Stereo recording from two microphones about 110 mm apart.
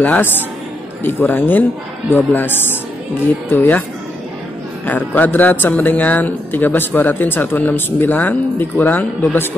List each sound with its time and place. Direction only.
0.0 s a man's voice: 15° left (ahead or behind)
4.8 s speech: 15° left (ahead or behind)